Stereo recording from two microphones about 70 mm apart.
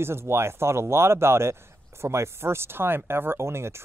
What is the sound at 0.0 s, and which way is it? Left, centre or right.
Speech, right.